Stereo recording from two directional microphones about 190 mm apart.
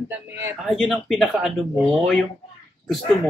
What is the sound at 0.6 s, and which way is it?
Speech, centre (ahead or behind).